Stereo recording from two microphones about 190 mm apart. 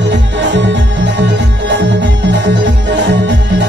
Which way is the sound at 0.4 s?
70° right (ahead or behind).